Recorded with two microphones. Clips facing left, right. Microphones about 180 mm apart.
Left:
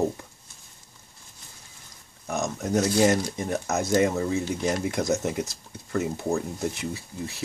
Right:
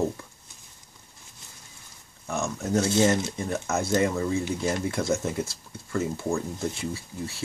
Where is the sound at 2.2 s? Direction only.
20° left (ahead or behind).